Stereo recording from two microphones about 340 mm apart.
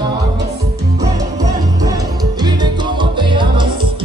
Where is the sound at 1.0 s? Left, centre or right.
Centre.